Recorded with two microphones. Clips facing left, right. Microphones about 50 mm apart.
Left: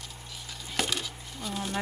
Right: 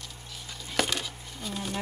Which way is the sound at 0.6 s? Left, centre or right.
Centre.